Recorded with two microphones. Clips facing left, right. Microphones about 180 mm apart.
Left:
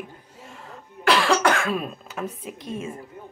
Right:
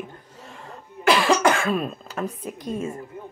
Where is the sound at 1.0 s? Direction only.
5° right (ahead or behind).